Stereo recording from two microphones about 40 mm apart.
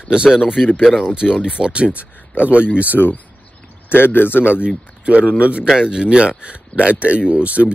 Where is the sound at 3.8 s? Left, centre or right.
Left.